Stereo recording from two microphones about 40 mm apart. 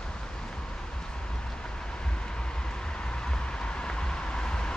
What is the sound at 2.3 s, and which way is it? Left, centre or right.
Vehicle, left.